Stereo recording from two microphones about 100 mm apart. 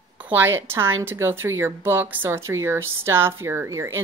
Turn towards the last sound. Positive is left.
turn(degrees=-30)  # may be behind; listen again after turning